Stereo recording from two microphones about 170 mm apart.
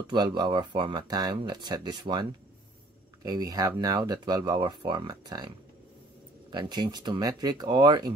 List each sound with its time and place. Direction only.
0.0 s speech: 25° right (ahead or behind)
3.3 s speech: 20° right (ahead or behind)
6.5 s speech: 25° right (ahead or behind)